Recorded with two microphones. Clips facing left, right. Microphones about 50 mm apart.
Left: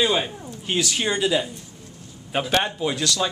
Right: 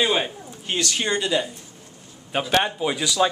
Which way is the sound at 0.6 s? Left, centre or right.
Centre.